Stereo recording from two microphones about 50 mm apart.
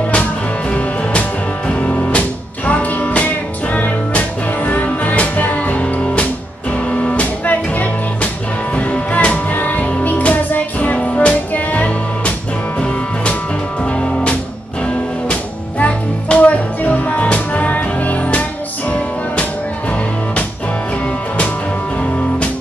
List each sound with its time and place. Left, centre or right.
0.7 s music: left
15.8 s music: left